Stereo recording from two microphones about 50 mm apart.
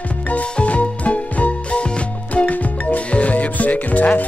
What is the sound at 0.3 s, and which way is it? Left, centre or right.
Music, left.